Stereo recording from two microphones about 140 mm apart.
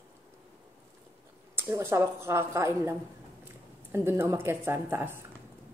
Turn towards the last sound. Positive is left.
turn(degrees=-15)  # may be behind; listen again after turning